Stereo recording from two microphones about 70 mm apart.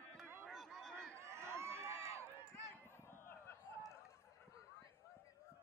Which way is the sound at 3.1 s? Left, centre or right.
Left.